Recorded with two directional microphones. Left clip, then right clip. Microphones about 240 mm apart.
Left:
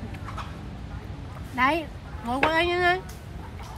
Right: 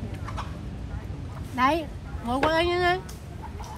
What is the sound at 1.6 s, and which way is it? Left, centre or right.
Speech, centre.